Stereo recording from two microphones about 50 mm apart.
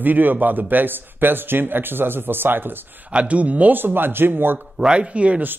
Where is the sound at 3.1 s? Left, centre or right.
Right.